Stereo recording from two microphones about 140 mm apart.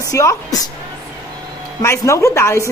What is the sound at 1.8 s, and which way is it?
Speech, 20° left (ahead or behind).